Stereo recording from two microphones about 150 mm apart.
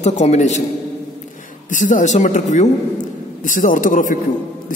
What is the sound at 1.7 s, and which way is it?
A man's voice, 60° left (ahead or behind).